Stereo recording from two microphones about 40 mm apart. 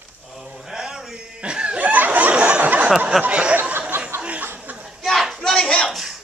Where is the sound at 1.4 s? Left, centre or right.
Right.